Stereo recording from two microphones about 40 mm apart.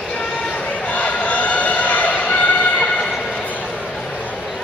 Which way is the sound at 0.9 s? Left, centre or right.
Left.